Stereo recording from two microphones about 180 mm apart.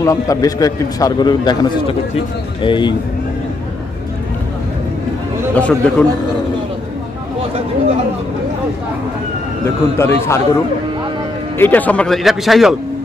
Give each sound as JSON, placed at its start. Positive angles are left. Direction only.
{"t": 0.0, "sound": "a man's voice", "side_deg": 20}
{"t": 5.5, "sound": "a man's voice", "side_deg": 5}
{"t": 9.9, "sound": "a man's voice", "side_deg": 15}